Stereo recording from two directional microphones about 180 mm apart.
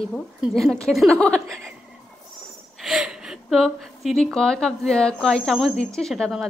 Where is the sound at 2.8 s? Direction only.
Centre (ahead or behind).